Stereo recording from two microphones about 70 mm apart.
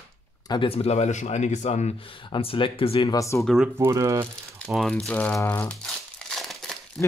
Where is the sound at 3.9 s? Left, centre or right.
Right.